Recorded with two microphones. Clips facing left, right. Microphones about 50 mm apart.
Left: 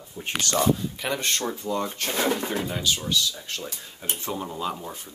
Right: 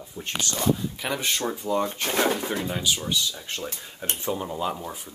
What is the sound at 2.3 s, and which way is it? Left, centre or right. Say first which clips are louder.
Speech: even; centre.